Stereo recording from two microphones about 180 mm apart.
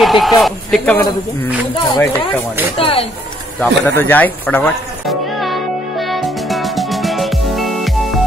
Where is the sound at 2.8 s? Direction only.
30° left (ahead or behind).